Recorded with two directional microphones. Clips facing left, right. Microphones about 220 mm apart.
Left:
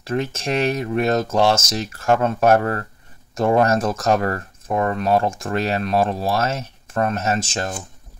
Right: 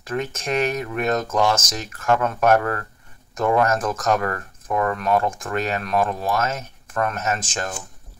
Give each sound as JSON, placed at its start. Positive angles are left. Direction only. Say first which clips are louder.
{"t": 0.0, "sound": "speech", "louder": "left 3 dB", "side_deg": 30}